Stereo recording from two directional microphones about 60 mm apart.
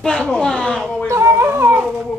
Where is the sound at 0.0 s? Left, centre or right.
Centre.